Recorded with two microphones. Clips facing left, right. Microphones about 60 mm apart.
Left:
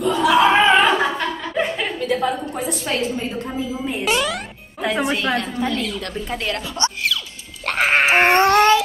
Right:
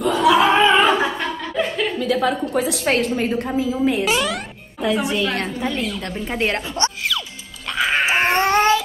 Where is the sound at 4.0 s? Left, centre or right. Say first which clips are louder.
Right 1 dB; centre.